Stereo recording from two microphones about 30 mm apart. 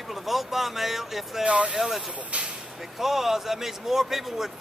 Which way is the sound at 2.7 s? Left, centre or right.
Centre.